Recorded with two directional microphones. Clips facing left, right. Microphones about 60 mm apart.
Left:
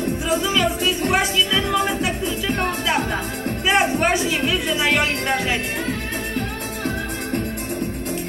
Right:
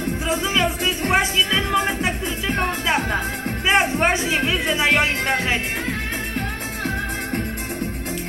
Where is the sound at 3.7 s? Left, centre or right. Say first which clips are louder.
Even; right.